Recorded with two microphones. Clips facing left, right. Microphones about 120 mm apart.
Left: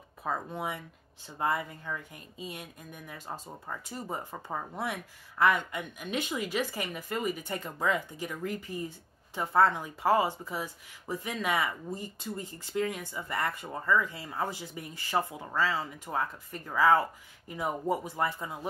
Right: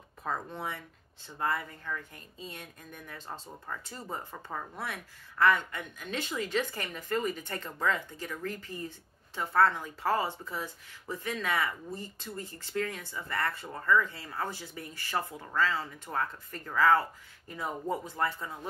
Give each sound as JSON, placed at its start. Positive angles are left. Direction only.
{"t": 0.2, "sound": "speech", "side_deg": 10}